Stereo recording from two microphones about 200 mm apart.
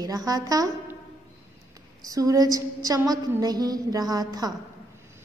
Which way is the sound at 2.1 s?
15° right (ahead or behind).